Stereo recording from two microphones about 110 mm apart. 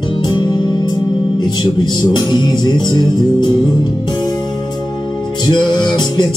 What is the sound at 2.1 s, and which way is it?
Music, 40° left (ahead or behind).